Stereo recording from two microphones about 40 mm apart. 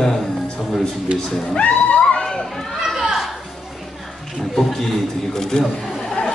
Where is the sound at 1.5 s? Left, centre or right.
Left.